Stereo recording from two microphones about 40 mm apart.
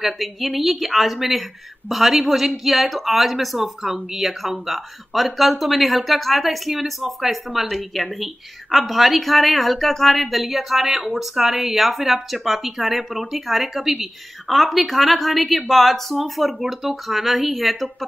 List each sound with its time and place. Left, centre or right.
0.0 s speech: centre